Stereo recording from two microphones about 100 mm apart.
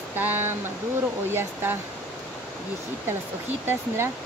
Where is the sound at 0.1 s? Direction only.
20° right (ahead or behind).